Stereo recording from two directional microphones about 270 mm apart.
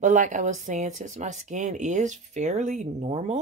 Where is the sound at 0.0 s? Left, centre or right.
Right.